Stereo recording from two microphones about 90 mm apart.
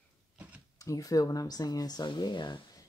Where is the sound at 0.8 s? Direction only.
40° left (ahead or behind); by 2.6 s 55° left (ahead or behind).